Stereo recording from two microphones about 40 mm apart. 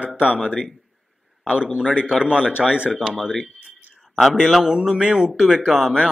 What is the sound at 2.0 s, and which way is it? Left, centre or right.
Speech, right.